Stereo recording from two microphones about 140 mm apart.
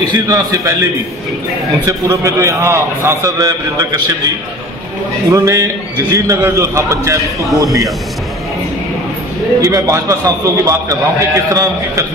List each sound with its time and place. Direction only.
0.0 s a man's voice: 25° right (ahead or behind)
1.9 s a man's voice: 20° right (ahead or behind)
5.3 s a man's voice: 25° right (ahead or behind)
9.6 s a man's voice: 25° right (ahead or behind)